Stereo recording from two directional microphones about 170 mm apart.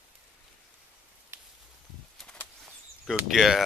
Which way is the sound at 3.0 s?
Centre (ahead or behind).